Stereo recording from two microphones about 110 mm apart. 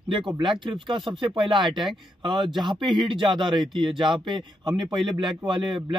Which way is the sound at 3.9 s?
45° right (ahead or behind).